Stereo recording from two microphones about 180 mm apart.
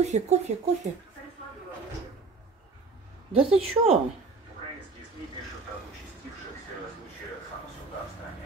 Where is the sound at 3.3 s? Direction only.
35° right (ahead or behind).